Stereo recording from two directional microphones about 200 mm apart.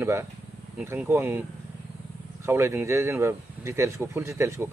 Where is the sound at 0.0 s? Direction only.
15° right (ahead or behind).